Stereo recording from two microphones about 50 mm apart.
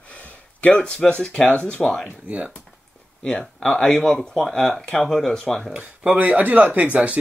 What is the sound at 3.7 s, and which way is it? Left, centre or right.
Speech, centre.